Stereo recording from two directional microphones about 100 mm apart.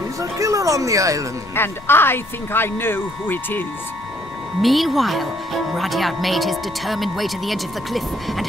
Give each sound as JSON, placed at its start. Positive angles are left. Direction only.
{"t": 0.2, "sound": "speech", "side_deg": -35}
{"t": 1.5, "sound": "speech", "side_deg": 20}
{"t": 4.6, "sound": "speech", "side_deg": 0}